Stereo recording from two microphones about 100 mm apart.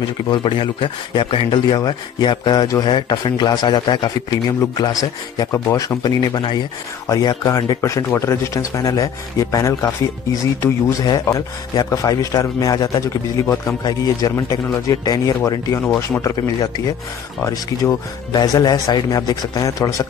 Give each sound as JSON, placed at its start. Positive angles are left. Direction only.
{"t": 0.3, "sound": "speech", "side_deg": 55}
{"t": 1.8, "sound": "speech", "side_deg": 45}
{"t": 5.5, "sound": "speech", "side_deg": 30}
{"t": 6.0, "sound": "speech", "side_deg": 45}
{"t": 7.1, "sound": "speech", "side_deg": 35}
{"t": 11.0, "sound": "speech", "side_deg": 35}